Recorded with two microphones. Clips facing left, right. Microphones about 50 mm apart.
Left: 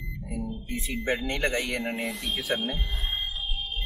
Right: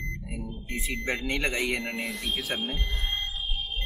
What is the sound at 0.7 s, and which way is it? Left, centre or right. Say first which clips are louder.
Speech: left 2 dB; right.